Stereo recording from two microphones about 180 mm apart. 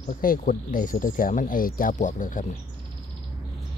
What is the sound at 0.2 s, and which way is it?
Speech, 50° left (ahead or behind).